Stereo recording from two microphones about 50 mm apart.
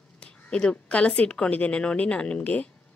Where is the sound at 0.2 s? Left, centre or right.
Centre.